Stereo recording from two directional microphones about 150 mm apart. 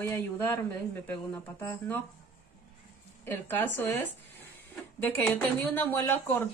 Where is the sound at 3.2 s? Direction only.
15° left (ahead or behind).